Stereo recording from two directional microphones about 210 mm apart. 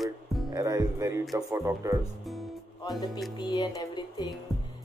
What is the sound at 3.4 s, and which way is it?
Speech, 20° left (ahead or behind).